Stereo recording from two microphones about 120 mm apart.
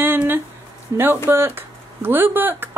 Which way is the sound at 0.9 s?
20° right (ahead or behind).